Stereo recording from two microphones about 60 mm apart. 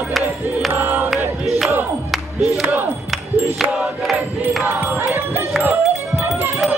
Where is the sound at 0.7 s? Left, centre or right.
Right.